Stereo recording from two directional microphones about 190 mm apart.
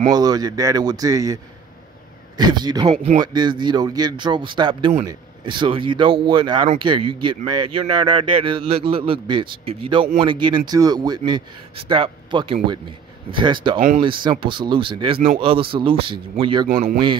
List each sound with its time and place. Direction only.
0.1 s a man's voice: 20° right (ahead or behind)
16.6 s speech: 50° right (ahead or behind)